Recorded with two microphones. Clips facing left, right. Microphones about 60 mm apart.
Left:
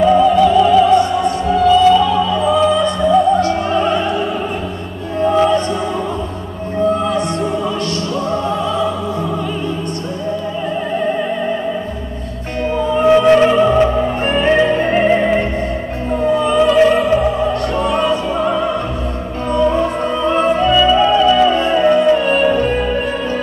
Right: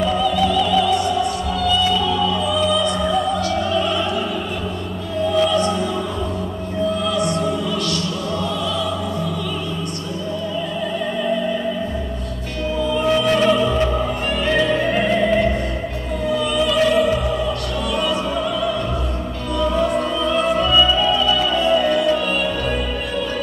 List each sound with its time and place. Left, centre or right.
0.0 s opera: left
1.5 s music: left
5.2 s music: left
6.8 s music: left
11.1 s music: left
12.6 s music: left
16.2 s opera: left
19.5 s music: left